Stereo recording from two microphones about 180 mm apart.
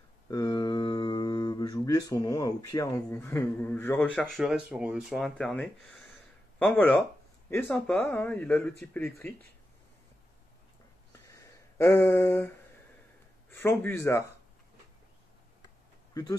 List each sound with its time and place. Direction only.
0.3 s a sound: 20° left (ahead or behind)
3.1 s speech: 15° left (ahead or behind)
4.1 s speech: centre (ahead or behind)
11.2 s a sound: 15° left (ahead or behind)
13.5 s speech: 10° left (ahead or behind)
16.1 s speech: 20° left (ahead or behind)